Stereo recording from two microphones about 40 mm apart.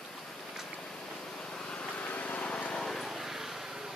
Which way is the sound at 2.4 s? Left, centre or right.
Left.